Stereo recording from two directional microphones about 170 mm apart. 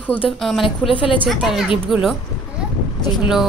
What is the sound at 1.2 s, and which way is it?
Speech, centre (ahead or behind).